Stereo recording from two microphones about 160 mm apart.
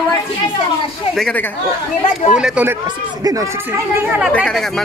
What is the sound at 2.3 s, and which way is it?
Speech, 10° right (ahead or behind).